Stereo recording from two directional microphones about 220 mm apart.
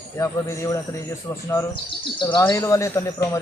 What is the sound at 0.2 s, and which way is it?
Speech, 15° left (ahead or behind).